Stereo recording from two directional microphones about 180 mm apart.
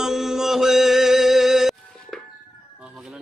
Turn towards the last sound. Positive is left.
turn(degrees=0)  # may be behind; listen again after turning